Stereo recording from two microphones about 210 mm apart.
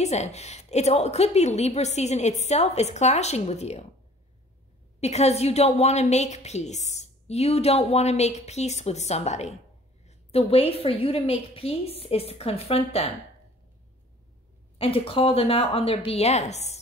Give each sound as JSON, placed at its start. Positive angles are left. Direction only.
{"t": 0.0, "sound": "a woman's voice", "side_deg": 30}
{"t": 5.0, "sound": "a woman's voice", "side_deg": 30}
{"t": 14.8, "sound": "a woman's voice", "side_deg": 25}